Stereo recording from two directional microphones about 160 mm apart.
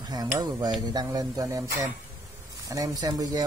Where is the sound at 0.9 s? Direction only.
25° right (ahead or behind).